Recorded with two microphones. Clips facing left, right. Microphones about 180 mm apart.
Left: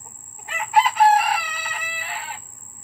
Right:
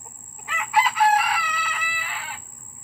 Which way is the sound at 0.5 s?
40° left (ahead or behind).